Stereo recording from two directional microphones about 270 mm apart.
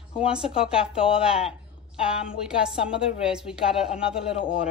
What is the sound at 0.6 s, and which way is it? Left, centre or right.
Speech, centre.